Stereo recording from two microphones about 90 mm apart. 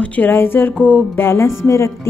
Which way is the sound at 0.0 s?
20° left (ahead or behind).